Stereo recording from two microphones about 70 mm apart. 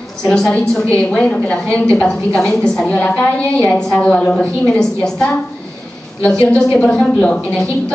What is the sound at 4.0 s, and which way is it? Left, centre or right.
A woman's voice, centre.